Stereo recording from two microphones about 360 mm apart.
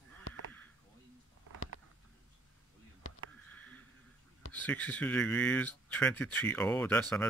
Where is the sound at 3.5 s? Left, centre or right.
Centre.